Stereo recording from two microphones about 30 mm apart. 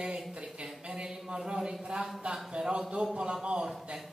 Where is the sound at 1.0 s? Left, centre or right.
Right.